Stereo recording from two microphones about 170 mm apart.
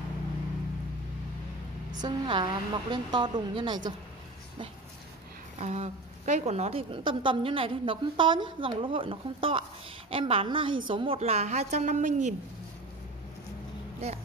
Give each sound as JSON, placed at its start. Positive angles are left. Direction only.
{"t": 1.9, "sound": "a woman's voice", "side_deg": -25}
{"t": 5.6, "sound": "a woman's voice", "side_deg": -40}